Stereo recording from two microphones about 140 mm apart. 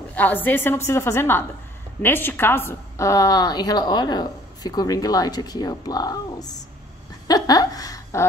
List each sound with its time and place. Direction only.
0.1 s a woman's voice: 10° left (ahead or behind)